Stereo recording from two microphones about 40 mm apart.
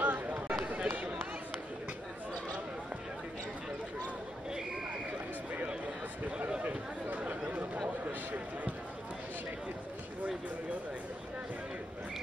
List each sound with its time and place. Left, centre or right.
0.0 s run: right
0.8 s run: right
7.1 s chatter: right